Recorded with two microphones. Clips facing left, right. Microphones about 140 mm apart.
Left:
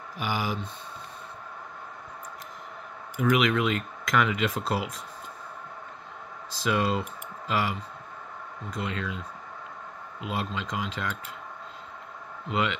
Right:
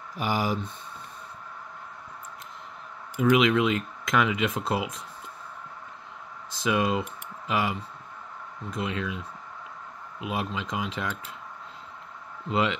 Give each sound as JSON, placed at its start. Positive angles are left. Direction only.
{"t": 0.2, "sound": "speech", "side_deg": -40}
{"t": 3.2, "sound": "speech", "side_deg": -20}
{"t": 6.5, "sound": "speech", "side_deg": -20}
{"t": 10.2, "sound": "speech", "side_deg": -15}
{"t": 12.4, "sound": "speech", "side_deg": -30}